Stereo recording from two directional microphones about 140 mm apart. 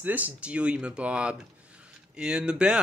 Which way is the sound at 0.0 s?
10° right (ahead or behind).